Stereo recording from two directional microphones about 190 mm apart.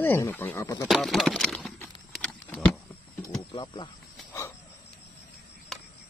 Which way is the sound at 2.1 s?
Centre (ahead or behind).